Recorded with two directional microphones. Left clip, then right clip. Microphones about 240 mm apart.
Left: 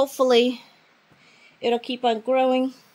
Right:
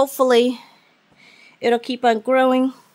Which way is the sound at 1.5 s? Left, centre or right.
Right.